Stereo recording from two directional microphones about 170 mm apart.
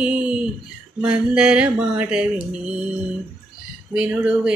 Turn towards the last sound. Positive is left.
turn(degrees=-5)  # may be behind; listen again after turning